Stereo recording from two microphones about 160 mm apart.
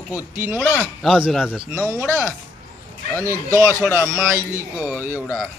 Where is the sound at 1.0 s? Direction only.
Centre (ahead or behind).